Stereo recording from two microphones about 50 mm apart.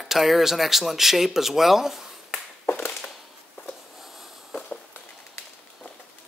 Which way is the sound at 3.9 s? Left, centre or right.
Centre.